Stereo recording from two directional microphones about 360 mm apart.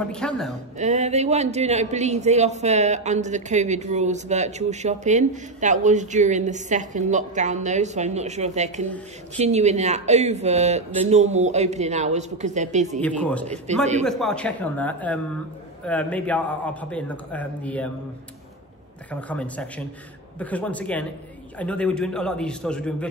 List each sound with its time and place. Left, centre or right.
0.2 s speech: centre
0.7 s speech: centre
13.0 s speech: centre
13.7 s a man's voice: centre
14.0 s speech: centre
19.0 s speech: centre